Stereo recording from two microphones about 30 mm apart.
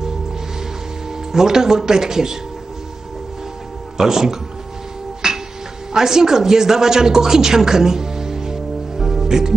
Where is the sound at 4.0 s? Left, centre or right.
Centre.